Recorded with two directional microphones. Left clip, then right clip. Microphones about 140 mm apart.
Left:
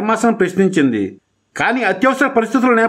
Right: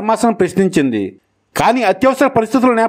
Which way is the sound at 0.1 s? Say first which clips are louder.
Right 2 dB; 35° right (ahead or behind).